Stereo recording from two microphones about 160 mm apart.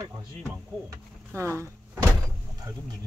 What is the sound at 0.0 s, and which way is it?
Speech, 15° right (ahead or behind).